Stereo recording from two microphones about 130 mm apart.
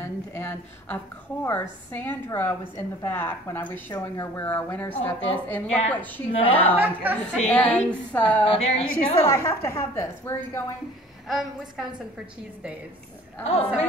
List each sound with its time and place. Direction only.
0.0 s a woman's voice: 15° left (ahead or behind)
6.8 s a woman's voice: 10° right (ahead or behind)
7.2 s a woman's voice: 10° left (ahead or behind)
8.5 s a woman's voice: 50° left (ahead or behind)
9.3 s a woman's voice: 25° left (ahead or behind)
11.2 s a woman's voice: centre (ahead or behind)
13.4 s a woman's voice: 55° left (ahead or behind)